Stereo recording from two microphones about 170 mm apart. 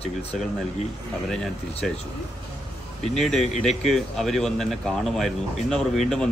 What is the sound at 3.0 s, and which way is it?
Speech, 5° left (ahead or behind).